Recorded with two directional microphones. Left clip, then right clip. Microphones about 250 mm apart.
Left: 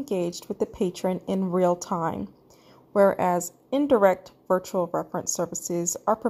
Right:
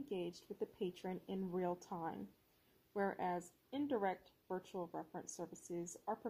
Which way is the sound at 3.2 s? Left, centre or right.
Left.